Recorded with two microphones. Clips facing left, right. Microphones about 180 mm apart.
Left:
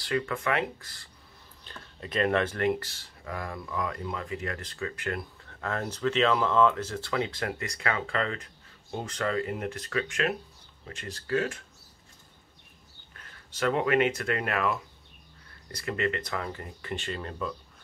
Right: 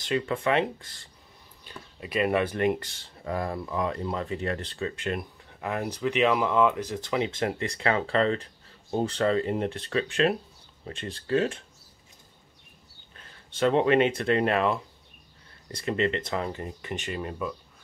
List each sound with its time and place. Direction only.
0.0 s speech: 25° right (ahead or behind)
1.6 s speech: 10° right (ahead or behind); by 11.6 s 30° right (ahead or behind)
13.1 s speech: 25° right (ahead or behind)